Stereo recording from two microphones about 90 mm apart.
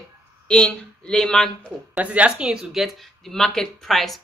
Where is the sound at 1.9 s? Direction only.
15° right (ahead or behind).